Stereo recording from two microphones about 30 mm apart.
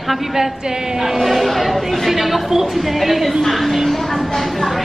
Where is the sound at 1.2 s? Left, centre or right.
Centre.